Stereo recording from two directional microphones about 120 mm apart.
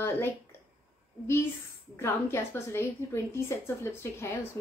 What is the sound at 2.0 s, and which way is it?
A woman's voice, 20° left (ahead or behind).